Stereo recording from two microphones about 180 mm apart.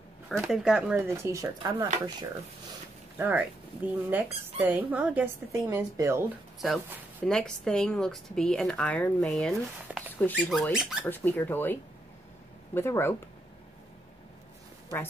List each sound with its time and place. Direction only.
0.4 s speech: centre (ahead or behind)
3.2 s speech: 10° right (ahead or behind)
6.6 s speech: centre (ahead or behind)
10.7 s speech: 5° right (ahead or behind)
11.1 s speech: 10° left (ahead or behind)